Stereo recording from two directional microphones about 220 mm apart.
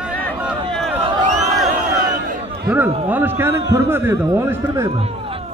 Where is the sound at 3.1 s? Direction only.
10° right (ahead or behind).